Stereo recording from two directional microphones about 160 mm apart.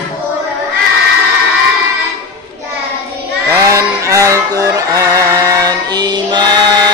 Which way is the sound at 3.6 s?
20° right (ahead or behind).